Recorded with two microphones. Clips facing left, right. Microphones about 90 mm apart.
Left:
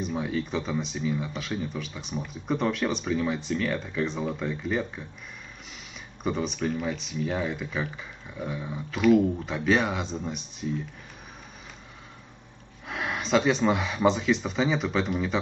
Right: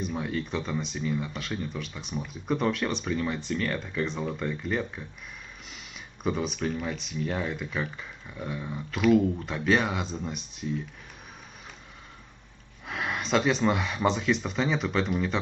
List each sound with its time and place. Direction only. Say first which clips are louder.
0.0 s speech: left 2 dB; centre (ahead or behind)
6.2 s speech: left 1 dB; centre (ahead or behind)
12.8 s speech: even; centre (ahead or behind)